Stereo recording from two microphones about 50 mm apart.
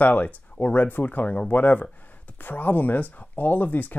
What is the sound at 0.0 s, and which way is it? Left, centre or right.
Speech, left.